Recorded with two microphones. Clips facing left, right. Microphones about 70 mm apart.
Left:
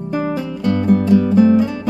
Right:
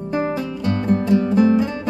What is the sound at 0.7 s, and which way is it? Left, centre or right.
Music, centre.